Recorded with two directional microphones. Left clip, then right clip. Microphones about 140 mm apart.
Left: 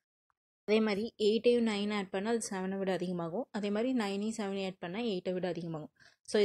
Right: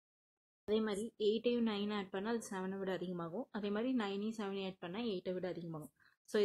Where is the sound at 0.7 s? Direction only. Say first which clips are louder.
Left 7 dB; 30° left (ahead or behind).